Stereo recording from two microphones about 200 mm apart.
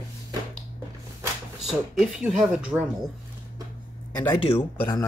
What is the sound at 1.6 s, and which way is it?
Speech, 5° right (ahead or behind).